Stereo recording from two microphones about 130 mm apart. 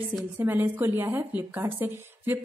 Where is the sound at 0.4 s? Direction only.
15° right (ahead or behind).